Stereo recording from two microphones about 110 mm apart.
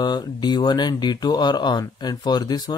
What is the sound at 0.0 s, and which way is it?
Speech, 40° left (ahead or behind).